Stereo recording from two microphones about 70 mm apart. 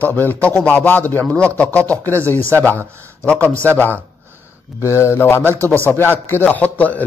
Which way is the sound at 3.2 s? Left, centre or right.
Left.